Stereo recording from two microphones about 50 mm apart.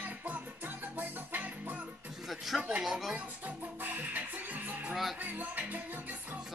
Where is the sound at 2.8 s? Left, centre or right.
Centre.